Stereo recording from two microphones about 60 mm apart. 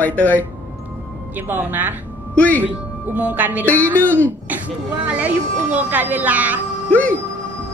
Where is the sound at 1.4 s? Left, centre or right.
Right.